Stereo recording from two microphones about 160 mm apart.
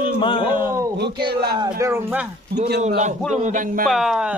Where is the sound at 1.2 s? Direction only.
30° right (ahead or behind).